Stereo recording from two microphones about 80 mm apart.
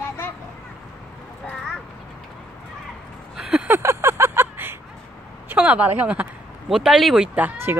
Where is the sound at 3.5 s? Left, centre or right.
Centre.